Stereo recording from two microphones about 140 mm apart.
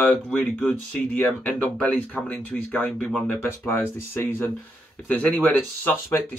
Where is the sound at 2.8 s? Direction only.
Centre (ahead or behind).